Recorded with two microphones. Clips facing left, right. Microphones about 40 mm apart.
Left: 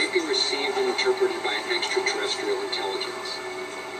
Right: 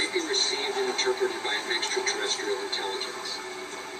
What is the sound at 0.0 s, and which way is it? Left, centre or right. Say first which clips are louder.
Television: left 4 dB; left.